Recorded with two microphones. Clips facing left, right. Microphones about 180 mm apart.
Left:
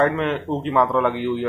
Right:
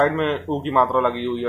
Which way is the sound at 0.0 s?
Centre (ahead or behind).